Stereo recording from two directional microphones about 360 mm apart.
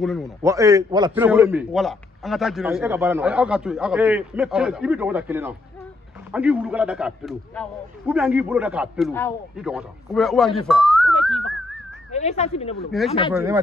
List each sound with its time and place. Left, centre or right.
0.0 s a man's voice: centre
12.1 s speech: centre
13.3 s speech: centre